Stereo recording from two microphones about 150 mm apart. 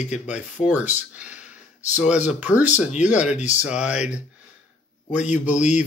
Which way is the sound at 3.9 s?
5° right (ahead or behind).